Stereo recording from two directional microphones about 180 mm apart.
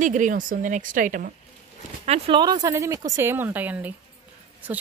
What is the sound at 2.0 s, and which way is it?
A woman's voice, 35° right (ahead or behind).